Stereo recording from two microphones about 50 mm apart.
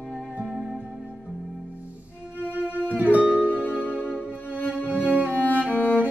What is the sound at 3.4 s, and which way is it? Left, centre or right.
Music, left.